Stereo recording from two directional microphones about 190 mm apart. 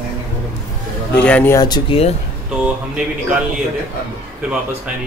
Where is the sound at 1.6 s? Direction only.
25° left (ahead or behind).